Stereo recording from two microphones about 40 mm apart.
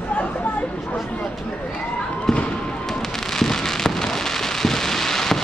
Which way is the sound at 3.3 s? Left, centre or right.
Centre.